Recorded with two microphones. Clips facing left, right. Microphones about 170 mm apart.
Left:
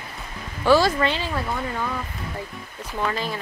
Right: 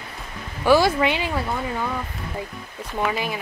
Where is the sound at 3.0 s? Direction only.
10° right (ahead or behind).